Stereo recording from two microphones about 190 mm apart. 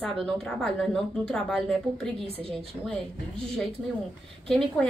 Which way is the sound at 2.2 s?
30° right (ahead or behind).